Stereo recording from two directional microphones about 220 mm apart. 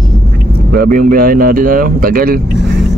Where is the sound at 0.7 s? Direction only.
40° right (ahead or behind).